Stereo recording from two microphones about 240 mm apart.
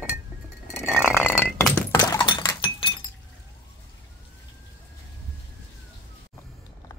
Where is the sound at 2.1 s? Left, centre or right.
Centre.